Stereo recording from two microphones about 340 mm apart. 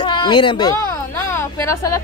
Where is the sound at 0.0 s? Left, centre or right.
Centre.